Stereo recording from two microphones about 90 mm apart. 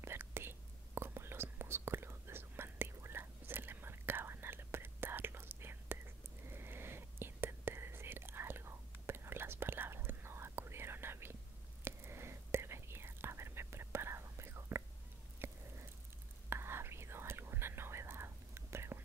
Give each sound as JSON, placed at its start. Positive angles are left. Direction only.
{"t": 0.0, "sound": "whispering", "side_deg": -25}
{"t": 15.3, "sound": "a sound", "side_deg": -25}
{"t": 16.4, "sound": "whispering", "side_deg": -25}